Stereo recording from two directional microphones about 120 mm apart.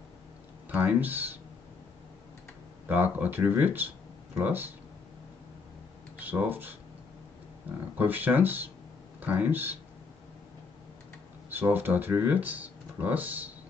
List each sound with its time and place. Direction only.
0.7 s speech: 15° right (ahead or behind)
2.9 s speech: 15° right (ahead or behind)
6.1 s speech: 15° right (ahead or behind)
11.5 s speech: 15° right (ahead or behind)